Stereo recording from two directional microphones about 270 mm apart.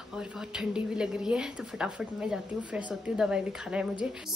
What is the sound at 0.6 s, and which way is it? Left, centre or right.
A woman's voice, centre.